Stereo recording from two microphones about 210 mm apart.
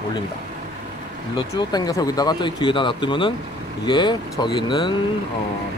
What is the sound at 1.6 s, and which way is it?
Speech, 20° left (ahead or behind).